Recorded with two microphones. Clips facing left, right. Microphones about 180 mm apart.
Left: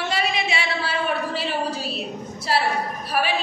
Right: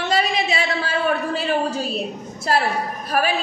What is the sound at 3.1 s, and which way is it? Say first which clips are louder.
Speech: right 3 dB; 45° right (ahead or behind).